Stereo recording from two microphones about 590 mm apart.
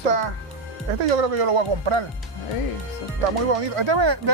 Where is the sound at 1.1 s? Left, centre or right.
Right.